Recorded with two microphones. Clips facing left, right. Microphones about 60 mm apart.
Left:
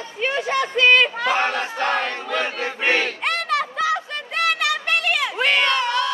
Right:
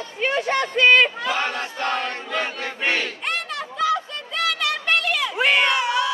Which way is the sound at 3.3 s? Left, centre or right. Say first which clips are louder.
Left 5 dB; left.